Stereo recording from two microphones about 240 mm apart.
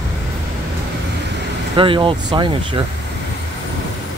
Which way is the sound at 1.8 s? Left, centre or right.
Right.